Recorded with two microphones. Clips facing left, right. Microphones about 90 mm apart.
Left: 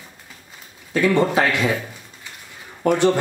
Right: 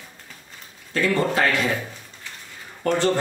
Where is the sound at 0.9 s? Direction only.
15° left (ahead or behind).